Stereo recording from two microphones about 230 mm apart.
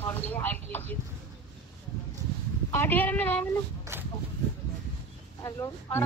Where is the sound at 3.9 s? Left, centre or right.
Centre.